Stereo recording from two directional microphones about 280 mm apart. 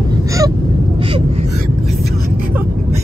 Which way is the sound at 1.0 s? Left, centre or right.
Centre.